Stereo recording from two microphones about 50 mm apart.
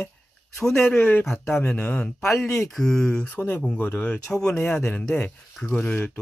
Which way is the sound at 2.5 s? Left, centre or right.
Centre.